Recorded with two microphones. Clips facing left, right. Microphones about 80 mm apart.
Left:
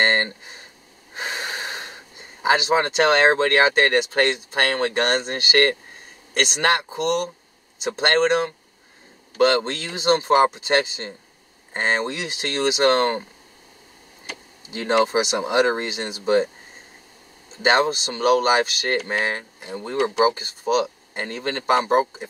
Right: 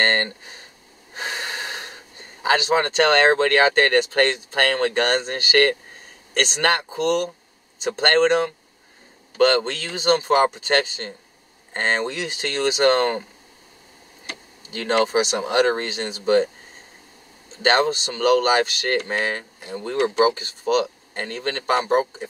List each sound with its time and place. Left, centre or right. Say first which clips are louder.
0.0 s speech: left 1 dB; centre
1.2 s wheeze: even; centre
2.4 s speech: even; centre
9.6 s speech: right 1 dB; centre
14.7 s speech: left 1 dB; centre
17.6 s speech: even; centre